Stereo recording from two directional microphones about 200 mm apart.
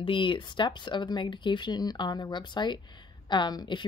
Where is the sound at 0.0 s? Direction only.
25° left (ahead or behind).